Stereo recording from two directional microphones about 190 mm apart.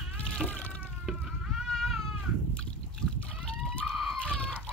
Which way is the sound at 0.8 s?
5° right (ahead or behind).